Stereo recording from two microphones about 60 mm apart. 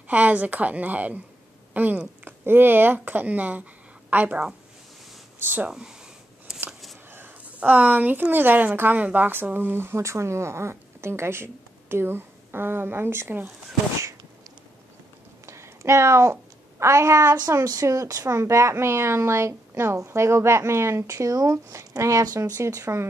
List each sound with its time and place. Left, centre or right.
0.1 s a woman's voice: right
5.4 s speech: right
5.7 s speech: centre
7.4 s a woman's voice: right
15.4 s a sound: right
17.5 s speech: right
17.8 s speech: right